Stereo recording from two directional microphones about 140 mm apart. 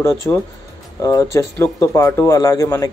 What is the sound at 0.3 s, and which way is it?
Speech, 20° left (ahead or behind).